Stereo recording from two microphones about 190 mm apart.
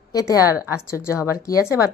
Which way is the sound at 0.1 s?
20° left (ahead or behind).